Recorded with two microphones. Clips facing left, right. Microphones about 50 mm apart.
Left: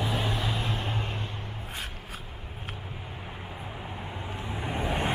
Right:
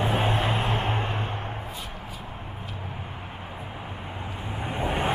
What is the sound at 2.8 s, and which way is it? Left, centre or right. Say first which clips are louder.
Vehicle: right 4 dB; right.